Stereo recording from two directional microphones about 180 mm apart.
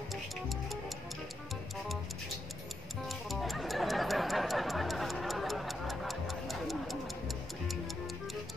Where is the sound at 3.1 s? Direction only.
Centre (ahead or behind).